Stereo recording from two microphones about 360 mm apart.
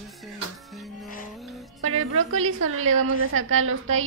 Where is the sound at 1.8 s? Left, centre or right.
Right.